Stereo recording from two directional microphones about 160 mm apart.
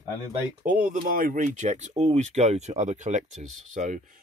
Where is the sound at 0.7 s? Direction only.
55° right (ahead or behind).